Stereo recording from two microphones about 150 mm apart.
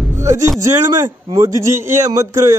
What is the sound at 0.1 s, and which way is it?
Music, 20° right (ahead or behind).